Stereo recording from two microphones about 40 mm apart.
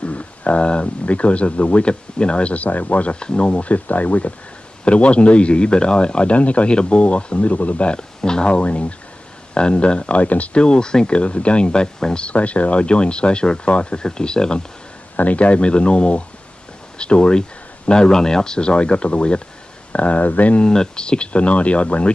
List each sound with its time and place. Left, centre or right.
0.0 s speech: left
3.2 s a man's voice: left
7.9 s speech: left
10.6 s speech: left
15.1 s a man's voice: left
20.5 s speech: centre